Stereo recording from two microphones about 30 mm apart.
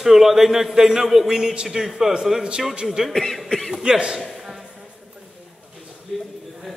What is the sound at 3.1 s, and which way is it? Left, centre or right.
Speech, centre.